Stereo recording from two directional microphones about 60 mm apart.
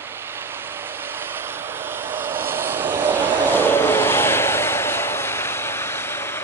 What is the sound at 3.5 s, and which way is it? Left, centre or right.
Vehicle, left.